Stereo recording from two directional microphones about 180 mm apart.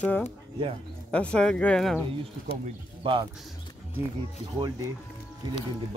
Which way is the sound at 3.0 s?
25° right (ahead or behind).